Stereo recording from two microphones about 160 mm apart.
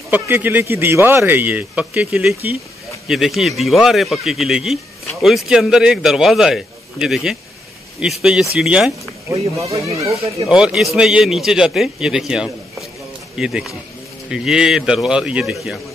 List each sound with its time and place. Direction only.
0.1 s a man's voice: 10° right (ahead or behind)
9.3 s speech: 20° right (ahead or behind)
10.5 s a man's voice: 5° right (ahead or behind)